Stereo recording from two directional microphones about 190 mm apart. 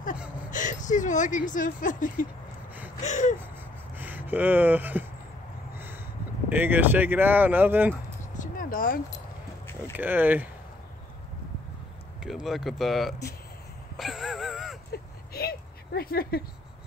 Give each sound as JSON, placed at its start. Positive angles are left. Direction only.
{"t": 0.5, "sound": "speech", "side_deg": 40}
{"t": 3.0, "sound": "gasp", "side_deg": 40}
{"t": 3.9, "sound": "speech", "side_deg": -10}
{"t": 6.5, "sound": "speech", "side_deg": -10}
{"t": 8.4, "sound": "a sound", "side_deg": 45}
{"t": 9.9, "sound": "speech", "side_deg": -10}
{"t": 12.2, "sound": "speech", "side_deg": -5}
{"t": 13.9, "sound": "a sound", "side_deg": 0}
{"t": 14.9, "sound": "a sound", "side_deg": 55}